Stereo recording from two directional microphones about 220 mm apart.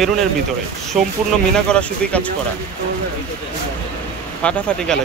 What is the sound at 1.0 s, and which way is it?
Speech, 5° right (ahead or behind).